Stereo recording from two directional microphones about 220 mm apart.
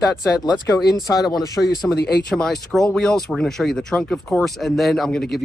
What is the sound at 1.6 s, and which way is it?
Speech, centre (ahead or behind).